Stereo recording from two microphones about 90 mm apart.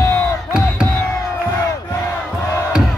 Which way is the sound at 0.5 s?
10° right (ahead or behind).